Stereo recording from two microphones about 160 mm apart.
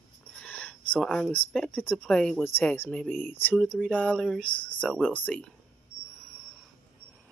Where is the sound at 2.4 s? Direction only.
15° left (ahead or behind).